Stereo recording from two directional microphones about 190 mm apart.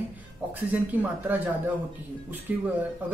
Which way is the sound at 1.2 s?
10° right (ahead or behind).